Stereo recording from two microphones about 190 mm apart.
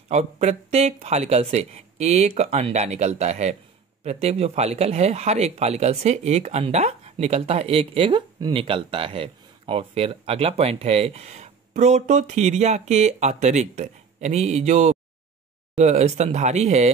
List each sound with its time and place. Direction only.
0.1 s speech: 35° right (ahead or behind)